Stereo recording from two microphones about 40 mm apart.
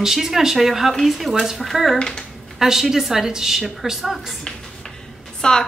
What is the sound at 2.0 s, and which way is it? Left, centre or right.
Speech, left.